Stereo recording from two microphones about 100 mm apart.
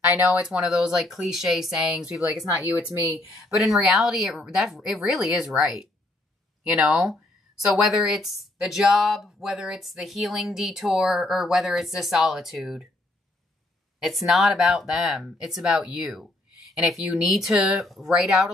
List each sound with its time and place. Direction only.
0.3 s speech: 10° right (ahead or behind)
3.5 s speech: centre (ahead or behind)
14.0 s speech: centre (ahead or behind)